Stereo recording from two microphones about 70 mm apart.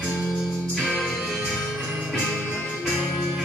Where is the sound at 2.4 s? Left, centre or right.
Centre.